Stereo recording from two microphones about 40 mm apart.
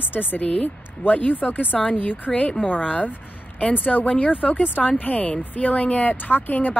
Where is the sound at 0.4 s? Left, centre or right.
Left.